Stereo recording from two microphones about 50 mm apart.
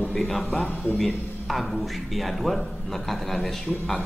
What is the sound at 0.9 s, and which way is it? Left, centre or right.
A man's voice, centre.